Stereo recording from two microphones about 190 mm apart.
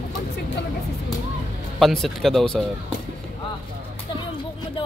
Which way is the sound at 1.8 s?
Centre (ahead or behind).